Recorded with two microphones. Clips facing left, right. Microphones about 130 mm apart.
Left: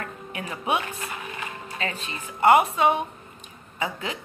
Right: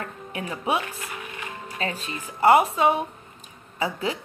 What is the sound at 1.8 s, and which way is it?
Speech, 35° right (ahead or behind).